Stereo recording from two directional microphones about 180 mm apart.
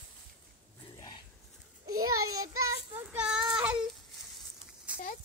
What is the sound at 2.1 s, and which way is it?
Child singing, 20° right (ahead or behind).